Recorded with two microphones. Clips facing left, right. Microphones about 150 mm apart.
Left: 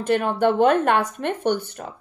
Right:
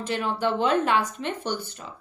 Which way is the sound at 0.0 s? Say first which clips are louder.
Left 7 dB; 55° left (ahead or behind).